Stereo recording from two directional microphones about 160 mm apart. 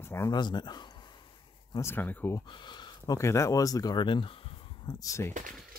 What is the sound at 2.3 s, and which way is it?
Speech, 30° left (ahead or behind).